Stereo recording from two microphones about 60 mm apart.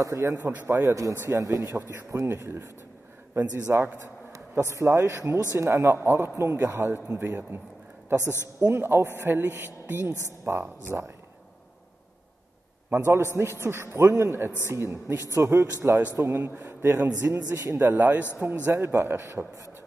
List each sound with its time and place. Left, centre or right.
0.0 s speech: right
1.8 s speech: right
4.3 s a man's voice: right
12.9 s speech: right
15.3 s a man's voice: right
17.2 s a man's voice: right
17.7 s a man's voice: right
18.7 s a man's voice: right
19.4 s speech: centre